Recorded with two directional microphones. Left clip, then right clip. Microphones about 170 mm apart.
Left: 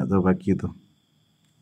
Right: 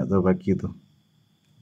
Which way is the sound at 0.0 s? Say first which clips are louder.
Even; 20° left (ahead or behind).